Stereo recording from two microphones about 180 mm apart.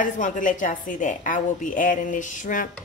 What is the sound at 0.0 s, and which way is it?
Speech, 45° left (ahead or behind).